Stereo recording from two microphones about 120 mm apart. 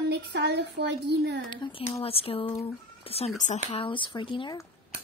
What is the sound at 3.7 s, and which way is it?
Speech, 45° left (ahead or behind).